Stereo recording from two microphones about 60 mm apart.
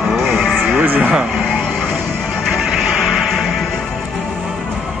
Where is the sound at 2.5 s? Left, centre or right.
Centre.